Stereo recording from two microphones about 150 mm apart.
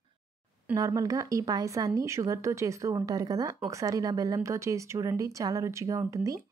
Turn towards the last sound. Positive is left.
turn(degrees=-20)  # may be behind; listen again after turning